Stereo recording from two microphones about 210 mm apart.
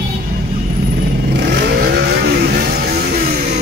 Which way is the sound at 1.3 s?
50° right (ahead or behind).